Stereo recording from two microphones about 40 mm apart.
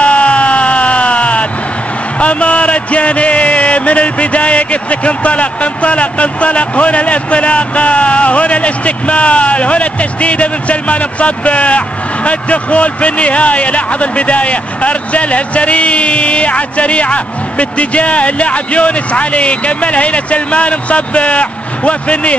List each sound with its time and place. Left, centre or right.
0.0 s a sound: left
2.1 s music: left
12.3 s a man's voice: left